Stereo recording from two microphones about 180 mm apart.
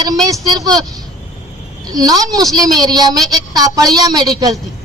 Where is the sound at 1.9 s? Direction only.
20° right (ahead or behind).